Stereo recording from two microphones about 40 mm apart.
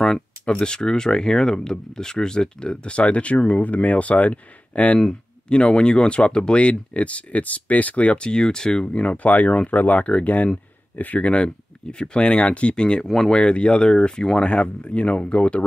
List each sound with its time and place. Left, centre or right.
0.5 s speech: left
4.9 s speech: left
11.2 s speech: left
13.0 s speech: centre; by 15.6 s left